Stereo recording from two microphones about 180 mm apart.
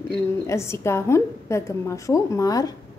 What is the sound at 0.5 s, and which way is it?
A woman's voice, 15° left (ahead or behind).